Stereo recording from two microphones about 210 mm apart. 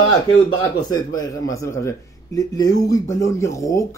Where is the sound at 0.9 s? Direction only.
15° left (ahead or behind).